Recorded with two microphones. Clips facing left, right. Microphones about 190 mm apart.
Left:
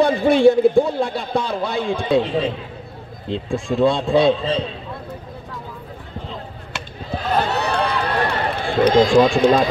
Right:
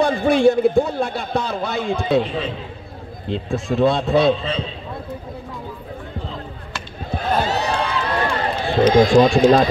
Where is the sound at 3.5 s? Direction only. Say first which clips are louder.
Even; 5° right (ahead or behind).